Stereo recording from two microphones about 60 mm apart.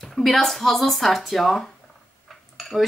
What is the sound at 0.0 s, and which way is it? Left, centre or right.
Speech, centre.